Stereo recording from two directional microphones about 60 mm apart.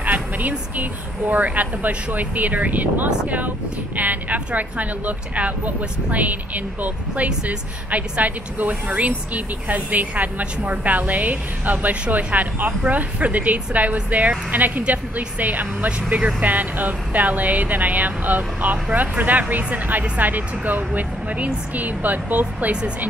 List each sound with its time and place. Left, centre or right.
0.0 s speech: right